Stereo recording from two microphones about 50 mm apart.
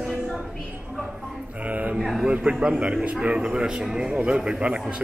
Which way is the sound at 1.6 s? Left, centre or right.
Right.